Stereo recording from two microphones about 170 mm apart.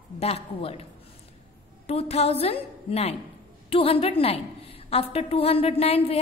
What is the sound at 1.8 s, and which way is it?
A woman's voice, 35° left (ahead or behind).